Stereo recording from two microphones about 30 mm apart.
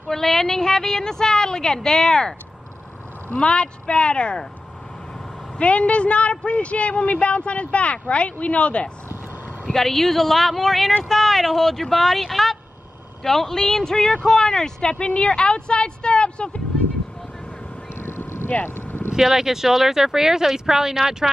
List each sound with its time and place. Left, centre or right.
0.1 s a woman's voice: centre
3.3 s speech: left
5.6 s speech: left
9.7 s a woman's voice: centre; by 16.6 s left
18.5 s vehicle: left
19.1 s speech: centre